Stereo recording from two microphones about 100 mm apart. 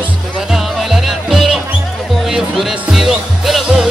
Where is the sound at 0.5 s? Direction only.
Centre (ahead or behind).